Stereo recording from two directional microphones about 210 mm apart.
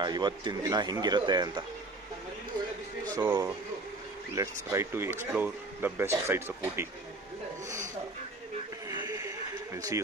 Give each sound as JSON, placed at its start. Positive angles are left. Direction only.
{"t": 0.0, "sound": "speech", "side_deg": -20}
{"t": 3.1, "sound": "speech", "side_deg": -15}
{"t": 9.0, "sound": "a sound", "side_deg": -15}